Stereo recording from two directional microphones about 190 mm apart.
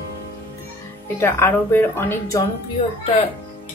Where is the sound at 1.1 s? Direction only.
10° left (ahead or behind).